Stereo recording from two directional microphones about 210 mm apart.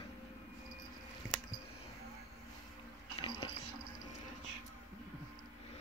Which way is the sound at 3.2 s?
20° left (ahead or behind).